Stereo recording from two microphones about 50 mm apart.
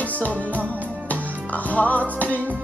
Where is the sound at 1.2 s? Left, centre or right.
Right.